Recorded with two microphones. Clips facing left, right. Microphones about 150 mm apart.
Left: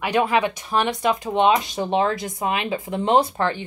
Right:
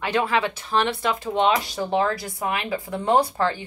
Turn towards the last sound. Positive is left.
turn(degrees=20)  # may be behind; listen again after turning